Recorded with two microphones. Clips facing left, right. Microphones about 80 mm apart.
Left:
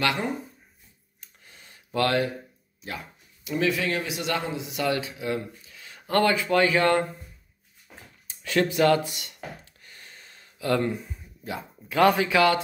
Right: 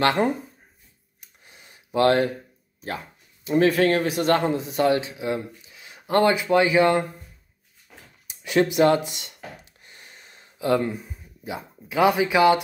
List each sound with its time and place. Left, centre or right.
1.2 s gasp: centre
2.8 s speech: right; by 7.1 s centre
8.3 s a sound: centre
10.8 s speech: centre